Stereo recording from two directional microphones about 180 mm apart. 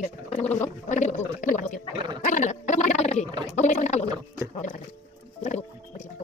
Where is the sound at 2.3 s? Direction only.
45° left (ahead or behind).